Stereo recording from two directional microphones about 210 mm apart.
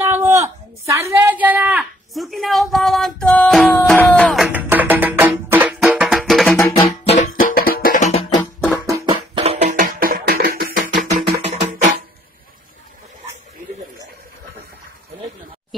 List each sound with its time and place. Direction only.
0.0 s a sound: 10° right (ahead or behind)
7.1 s music: 40° left (ahead or behind)
8.8 s music: 15° right (ahead or behind)
9.4 s music: 30° right (ahead or behind)